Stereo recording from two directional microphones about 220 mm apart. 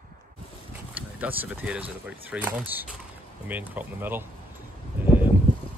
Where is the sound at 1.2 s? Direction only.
5° right (ahead or behind).